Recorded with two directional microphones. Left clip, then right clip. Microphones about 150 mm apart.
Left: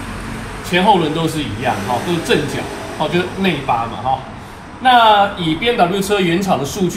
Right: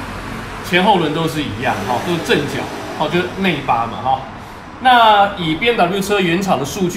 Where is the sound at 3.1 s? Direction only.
15° right (ahead or behind).